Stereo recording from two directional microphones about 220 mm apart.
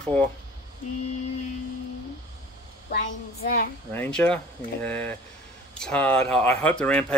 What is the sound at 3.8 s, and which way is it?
Speech, 5° left (ahead or behind).